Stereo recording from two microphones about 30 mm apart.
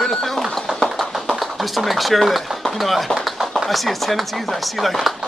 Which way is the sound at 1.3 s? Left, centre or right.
Centre.